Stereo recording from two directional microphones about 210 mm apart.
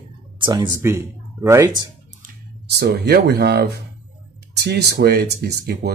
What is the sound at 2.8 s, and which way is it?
Speech, 50° right (ahead or behind).